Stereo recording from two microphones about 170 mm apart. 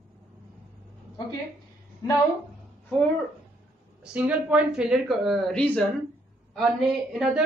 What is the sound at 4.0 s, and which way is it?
A woman's voice, 5° right (ahead or behind).